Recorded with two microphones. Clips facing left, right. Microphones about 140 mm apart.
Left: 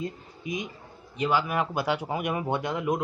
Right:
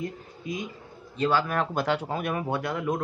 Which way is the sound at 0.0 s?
20° left (ahead or behind).